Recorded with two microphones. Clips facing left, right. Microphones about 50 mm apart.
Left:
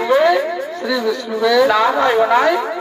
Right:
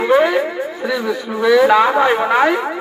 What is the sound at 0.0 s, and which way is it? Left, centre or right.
Speech, centre.